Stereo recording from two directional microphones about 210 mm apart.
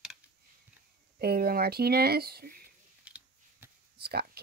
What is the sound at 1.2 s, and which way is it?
Speech, 45° right (ahead or behind).